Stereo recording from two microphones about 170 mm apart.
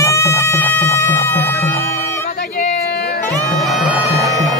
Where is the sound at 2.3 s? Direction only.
65° left (ahead or behind).